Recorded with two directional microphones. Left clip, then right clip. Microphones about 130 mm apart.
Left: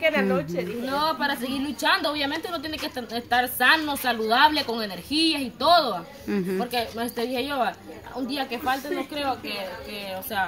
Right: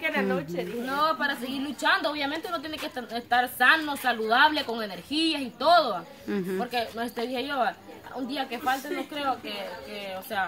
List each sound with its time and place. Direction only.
0.1 s a woman's voice: 90° right
0.8 s a woman's voice: 10° right (ahead or behind)